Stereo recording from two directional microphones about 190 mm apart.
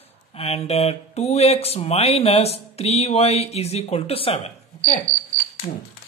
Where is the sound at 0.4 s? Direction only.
30° left (ahead or behind).